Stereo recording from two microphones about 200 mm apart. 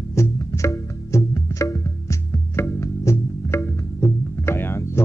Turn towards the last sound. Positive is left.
turn(degrees=10)  # may be behind; listen again after turning